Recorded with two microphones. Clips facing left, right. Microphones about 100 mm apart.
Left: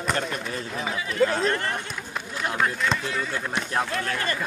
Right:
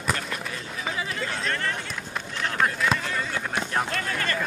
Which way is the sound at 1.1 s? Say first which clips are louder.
Left 8 dB; 40° left (ahead or behind).